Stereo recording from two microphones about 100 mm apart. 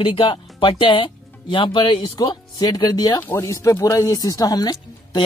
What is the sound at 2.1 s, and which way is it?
Speech, 40° left (ahead or behind).